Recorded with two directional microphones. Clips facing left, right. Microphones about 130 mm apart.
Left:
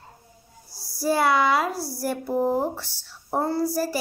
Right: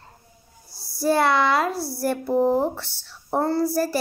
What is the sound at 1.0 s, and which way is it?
A child's voice, 10° left (ahead or behind).